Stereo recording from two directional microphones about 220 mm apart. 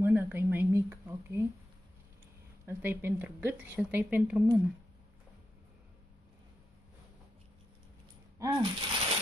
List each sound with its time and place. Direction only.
0.0 s a woman's voice: 10° right (ahead or behind)
2.6 s a woman's voice: 10° right (ahead or behind)
8.4 s a sound: 15° right (ahead or behind)